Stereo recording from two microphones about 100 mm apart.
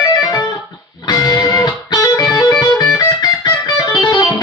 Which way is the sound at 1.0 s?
40° left (ahead or behind).